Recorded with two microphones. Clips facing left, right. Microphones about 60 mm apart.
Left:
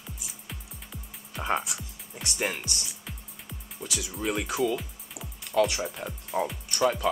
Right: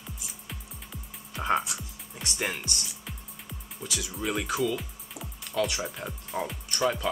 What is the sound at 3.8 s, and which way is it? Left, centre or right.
Speech, left.